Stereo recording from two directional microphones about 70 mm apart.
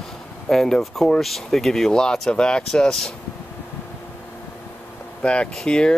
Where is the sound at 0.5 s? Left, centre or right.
Centre.